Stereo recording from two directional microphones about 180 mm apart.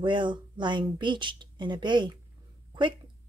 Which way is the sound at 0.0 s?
25° right (ahead or behind).